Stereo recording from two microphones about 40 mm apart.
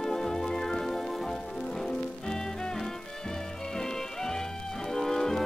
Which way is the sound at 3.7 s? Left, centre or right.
Centre.